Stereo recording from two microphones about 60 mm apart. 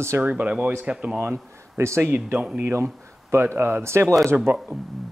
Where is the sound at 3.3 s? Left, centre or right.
Right.